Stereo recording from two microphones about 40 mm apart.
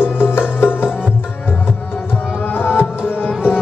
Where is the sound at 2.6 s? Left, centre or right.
Left.